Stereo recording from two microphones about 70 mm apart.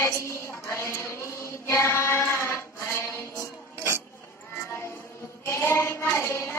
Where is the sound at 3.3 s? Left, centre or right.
Left.